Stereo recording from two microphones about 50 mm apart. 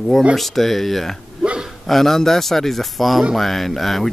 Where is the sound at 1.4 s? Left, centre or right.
Centre.